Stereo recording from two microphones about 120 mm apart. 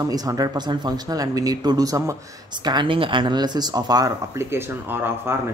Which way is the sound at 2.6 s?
40° right (ahead or behind).